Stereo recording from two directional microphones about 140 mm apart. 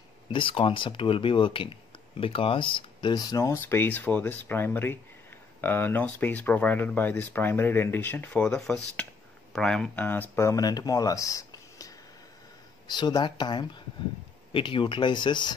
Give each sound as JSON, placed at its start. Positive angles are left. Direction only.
{"t": 0.3, "sound": "speech", "side_deg": 40}